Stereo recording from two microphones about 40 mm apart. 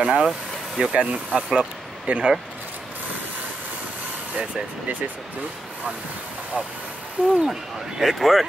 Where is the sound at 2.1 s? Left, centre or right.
Right.